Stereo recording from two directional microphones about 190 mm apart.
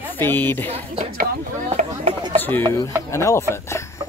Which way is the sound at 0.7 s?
30° right (ahead or behind).